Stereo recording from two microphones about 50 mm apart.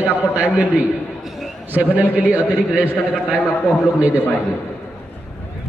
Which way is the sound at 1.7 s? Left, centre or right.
Right.